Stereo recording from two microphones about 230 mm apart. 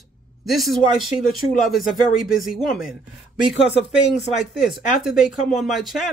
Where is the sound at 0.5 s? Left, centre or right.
Centre.